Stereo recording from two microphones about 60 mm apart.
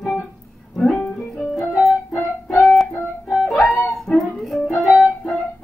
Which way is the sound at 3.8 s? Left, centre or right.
Centre.